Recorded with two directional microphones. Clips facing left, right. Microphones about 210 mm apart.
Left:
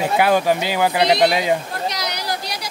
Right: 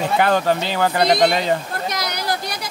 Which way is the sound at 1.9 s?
50° right (ahead or behind).